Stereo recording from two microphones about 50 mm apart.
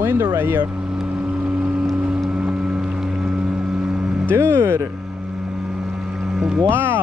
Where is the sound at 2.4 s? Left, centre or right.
Centre.